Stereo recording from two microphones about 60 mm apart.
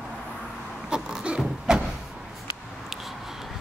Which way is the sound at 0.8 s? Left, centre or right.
Centre.